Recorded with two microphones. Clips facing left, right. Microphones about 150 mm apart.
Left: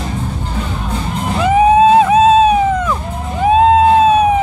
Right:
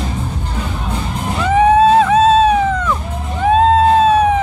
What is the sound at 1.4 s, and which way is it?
Music, 10° left (ahead or behind).